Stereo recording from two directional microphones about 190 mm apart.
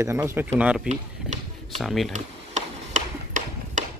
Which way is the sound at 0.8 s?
35° right (ahead or behind).